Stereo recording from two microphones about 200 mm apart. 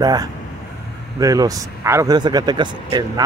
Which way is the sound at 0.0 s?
20° right (ahead or behind).